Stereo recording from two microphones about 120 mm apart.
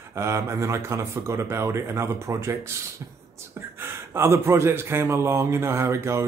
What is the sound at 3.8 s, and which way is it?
Speech, 20° right (ahead or behind).